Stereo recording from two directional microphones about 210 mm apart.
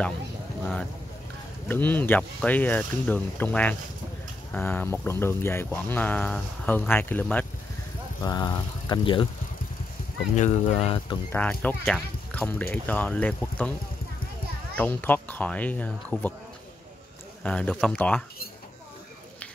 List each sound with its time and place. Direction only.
1.7 s speech: 10° left (ahead or behind)
8.2 s speech: 20° left (ahead or behind)
10.3 s speech: 30° left (ahead or behind)
11.3 s speech: 5° left (ahead or behind)
14.8 s speech: 10° left (ahead or behind)
17.4 s speech: 5° left (ahead or behind)